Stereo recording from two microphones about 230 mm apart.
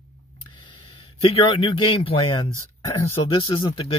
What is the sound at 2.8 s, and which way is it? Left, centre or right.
Speech, centre.